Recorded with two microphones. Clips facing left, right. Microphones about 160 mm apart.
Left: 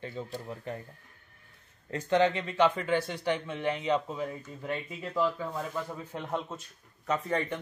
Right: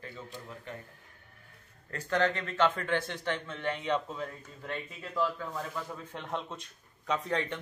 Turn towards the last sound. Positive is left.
turn(degrees=0)  # may be behind; listen again after turning